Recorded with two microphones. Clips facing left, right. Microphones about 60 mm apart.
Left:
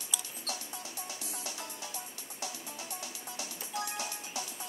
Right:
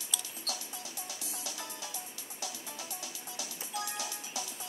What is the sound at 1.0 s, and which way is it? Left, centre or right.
Music, left.